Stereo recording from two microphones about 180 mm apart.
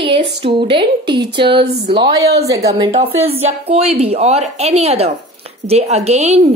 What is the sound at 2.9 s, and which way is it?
Speech, 35° right (ahead or behind).